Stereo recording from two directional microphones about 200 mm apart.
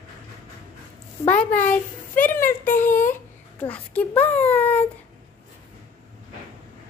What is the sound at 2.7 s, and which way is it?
Speech, 40° left (ahead or behind).